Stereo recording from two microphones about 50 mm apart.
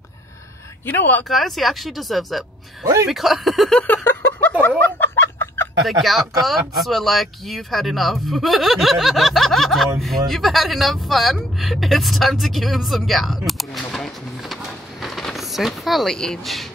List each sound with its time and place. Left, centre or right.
0.8 s speech: left
1.3 s speech: centre
4.4 s a sound: left
5.1 s chicken: left
5.9 s speech: centre
13.5 s a sound: centre